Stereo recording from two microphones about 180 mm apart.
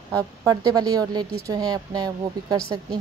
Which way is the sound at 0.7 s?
20° right (ahead or behind).